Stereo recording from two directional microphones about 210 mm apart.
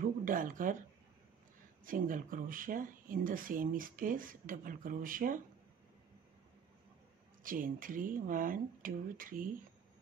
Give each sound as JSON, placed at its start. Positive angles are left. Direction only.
{"t": 0.0, "sound": "speech", "side_deg": -40}
{"t": 1.9, "sound": "speech", "side_deg": -40}
{"t": 7.4, "sound": "speech", "side_deg": -40}